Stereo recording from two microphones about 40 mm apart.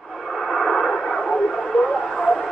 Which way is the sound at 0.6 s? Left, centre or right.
Centre.